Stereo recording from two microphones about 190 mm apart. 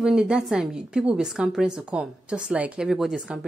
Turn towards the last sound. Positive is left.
turn(degrees=-5)  # may be behind; listen again after turning